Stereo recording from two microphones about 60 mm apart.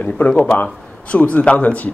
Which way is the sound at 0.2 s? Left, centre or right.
Left.